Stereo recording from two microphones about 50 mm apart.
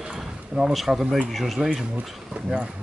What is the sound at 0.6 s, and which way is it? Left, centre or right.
Speech, centre.